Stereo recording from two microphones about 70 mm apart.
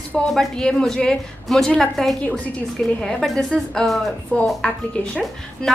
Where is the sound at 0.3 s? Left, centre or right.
Centre.